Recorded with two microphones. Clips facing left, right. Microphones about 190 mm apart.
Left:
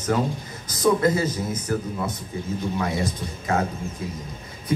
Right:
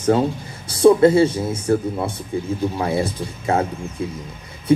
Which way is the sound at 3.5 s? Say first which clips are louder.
Right 4 dB; 25° right (ahead or behind).